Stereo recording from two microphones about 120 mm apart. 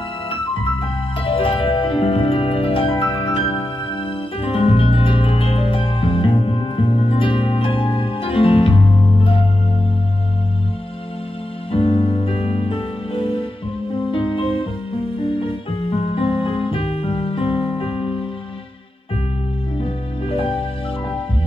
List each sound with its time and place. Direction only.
1.2 s music: 45° left (ahead or behind)
11.7 s music: 45° left (ahead or behind)
19.8 s music: 50° left (ahead or behind)